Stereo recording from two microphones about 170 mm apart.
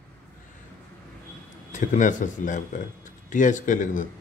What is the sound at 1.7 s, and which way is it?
Speech, 50° left (ahead or behind).